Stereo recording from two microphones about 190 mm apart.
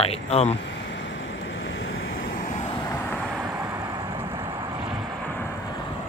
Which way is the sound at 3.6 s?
20° right (ahead or behind).